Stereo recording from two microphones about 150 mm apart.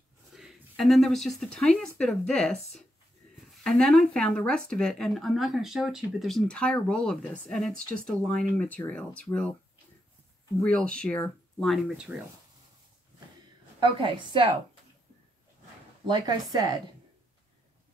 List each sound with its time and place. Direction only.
0.3 s speech: centre (ahead or behind)
10.6 s speech: 5° left (ahead or behind)
11.6 s speech: centre (ahead or behind)
13.7 s a woman's voice: 30° right (ahead or behind)